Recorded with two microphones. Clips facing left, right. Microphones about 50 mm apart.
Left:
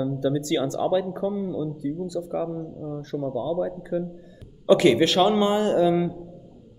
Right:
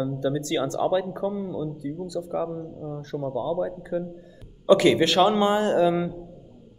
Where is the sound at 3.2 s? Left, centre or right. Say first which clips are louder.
Even; right.